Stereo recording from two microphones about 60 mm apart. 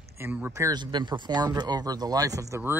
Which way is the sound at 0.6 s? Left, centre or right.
Right.